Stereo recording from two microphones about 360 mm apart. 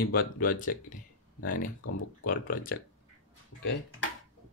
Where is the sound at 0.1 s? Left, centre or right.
Left.